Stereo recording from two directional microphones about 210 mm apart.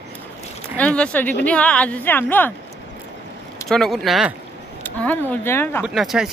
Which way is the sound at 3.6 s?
Centre (ahead or behind).